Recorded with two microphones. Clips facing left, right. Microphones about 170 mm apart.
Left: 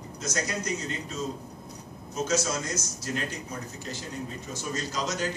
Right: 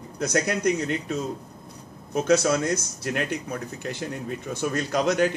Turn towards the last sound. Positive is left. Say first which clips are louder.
# right 9 dB
turn(degrees=-60)  # may be behind; listen again after turning